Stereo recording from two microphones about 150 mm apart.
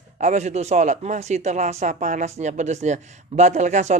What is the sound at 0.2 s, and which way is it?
Speech, 50° right (ahead or behind).